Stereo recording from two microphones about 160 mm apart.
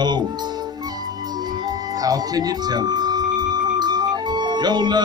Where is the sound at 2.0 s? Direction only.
25° right (ahead or behind).